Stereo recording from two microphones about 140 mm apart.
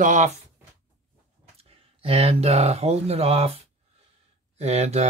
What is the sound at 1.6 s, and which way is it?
Speech, 45° right (ahead or behind).